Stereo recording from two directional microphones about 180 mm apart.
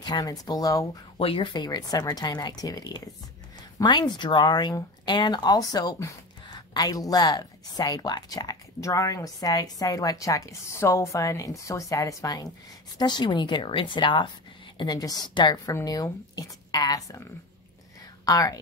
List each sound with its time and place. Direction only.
0.0 s speech: 20° left (ahead or behind)
18.2 s speech: 20° left (ahead or behind)